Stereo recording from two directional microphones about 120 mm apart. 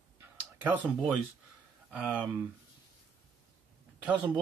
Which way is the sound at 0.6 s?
15° right (ahead or behind).